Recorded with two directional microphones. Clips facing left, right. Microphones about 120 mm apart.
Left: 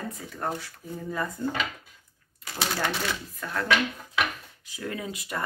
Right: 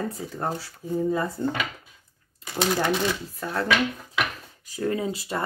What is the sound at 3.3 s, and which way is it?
Speech, 30° right (ahead or behind).